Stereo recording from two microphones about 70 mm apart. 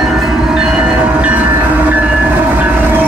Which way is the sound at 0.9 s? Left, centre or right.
Centre.